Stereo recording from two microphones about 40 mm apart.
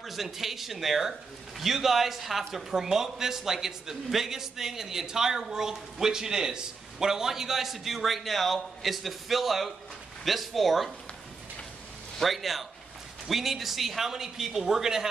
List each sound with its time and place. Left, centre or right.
0.0 s a man's voice: centre
12.2 s a man's voice: centre